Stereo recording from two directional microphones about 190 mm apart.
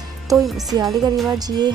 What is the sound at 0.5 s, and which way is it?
Speech, 20° right (ahead or behind).